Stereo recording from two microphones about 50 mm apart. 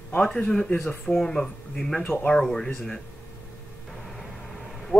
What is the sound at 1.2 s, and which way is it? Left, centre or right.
Speech, centre.